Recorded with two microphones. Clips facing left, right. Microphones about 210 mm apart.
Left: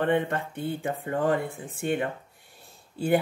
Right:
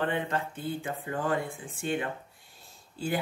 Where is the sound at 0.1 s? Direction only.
60° left (ahead or behind).